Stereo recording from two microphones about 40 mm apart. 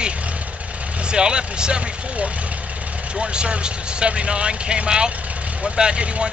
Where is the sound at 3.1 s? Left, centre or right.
Right.